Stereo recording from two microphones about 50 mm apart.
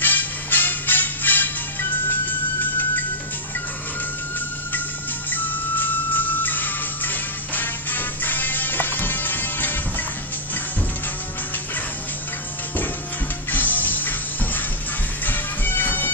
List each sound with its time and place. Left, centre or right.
0.0 s music: left
5.3 s music: left
13.5 s music: left